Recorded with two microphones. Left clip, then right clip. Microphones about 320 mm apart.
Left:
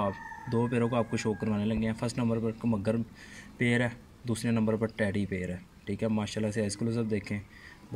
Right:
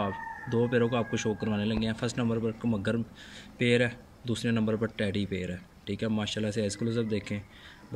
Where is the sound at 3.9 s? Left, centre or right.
Left.